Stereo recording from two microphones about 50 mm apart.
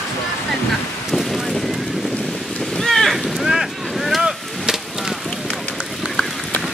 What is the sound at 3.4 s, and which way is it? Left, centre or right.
Boat, centre.